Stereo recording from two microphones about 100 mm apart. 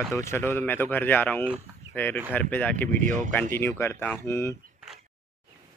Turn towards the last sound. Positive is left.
turn(degrees=25)  # may be behind; listen again after turning